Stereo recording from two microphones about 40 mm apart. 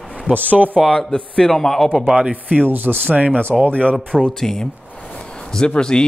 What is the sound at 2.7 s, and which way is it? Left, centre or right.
Speech, right.